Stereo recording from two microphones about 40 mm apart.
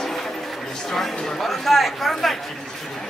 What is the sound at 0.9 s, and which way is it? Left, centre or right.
Speech, centre.